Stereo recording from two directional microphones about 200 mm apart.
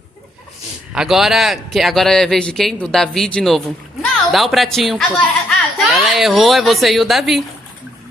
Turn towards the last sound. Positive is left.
turn(degrees=0)  # may be behind; listen again after turning